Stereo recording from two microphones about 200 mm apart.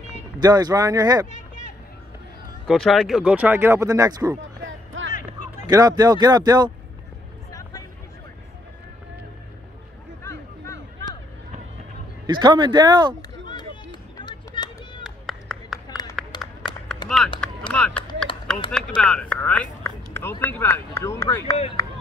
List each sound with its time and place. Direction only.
0.4 s speech: 20° right (ahead or behind)
1.2 s speech: 40° left (ahead or behind)
2.6 s speech: centre (ahead or behind); by 4.4 s 15° right (ahead or behind)
4.4 s a sound: 70° right (ahead or behind)
5.7 s speech: 20° right (ahead or behind)
10.2 s a sound: 15° left (ahead or behind)
12.3 s speech: 20° right (ahead or behind)
14.1 s a sound: 20° left (ahead or behind)
15.0 s clapping: centre (ahead or behind)
16.2 s run: centre (ahead or behind)
17.4 s typing: 5° left (ahead or behind)
17.9 s typing: 25° left (ahead or behind)
18.9 s speech: 5° left (ahead or behind)
21.5 s speech: 30° left (ahead or behind)